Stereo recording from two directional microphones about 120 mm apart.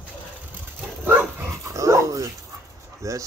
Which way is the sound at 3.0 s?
25° right (ahead or behind).